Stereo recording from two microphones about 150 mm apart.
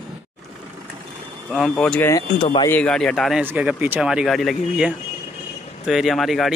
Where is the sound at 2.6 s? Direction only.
10° left (ahead or behind).